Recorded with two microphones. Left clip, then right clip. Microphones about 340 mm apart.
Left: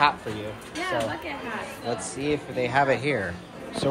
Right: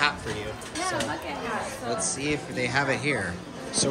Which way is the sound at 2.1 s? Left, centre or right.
Centre.